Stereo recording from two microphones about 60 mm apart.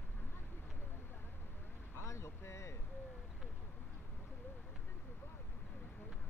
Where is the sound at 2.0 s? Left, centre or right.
Left.